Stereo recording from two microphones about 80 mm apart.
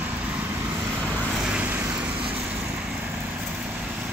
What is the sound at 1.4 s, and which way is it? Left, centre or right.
Vehicle, centre.